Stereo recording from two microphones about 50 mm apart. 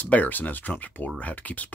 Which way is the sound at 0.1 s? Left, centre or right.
Left.